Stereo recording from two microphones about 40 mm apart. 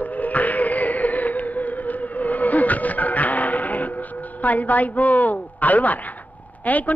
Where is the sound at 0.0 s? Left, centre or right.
Left.